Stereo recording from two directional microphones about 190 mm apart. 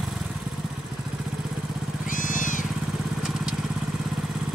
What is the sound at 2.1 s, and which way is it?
Vehicle, 45° left (ahead or behind).